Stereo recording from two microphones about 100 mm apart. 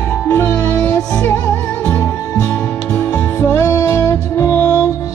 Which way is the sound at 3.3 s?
25° left (ahead or behind).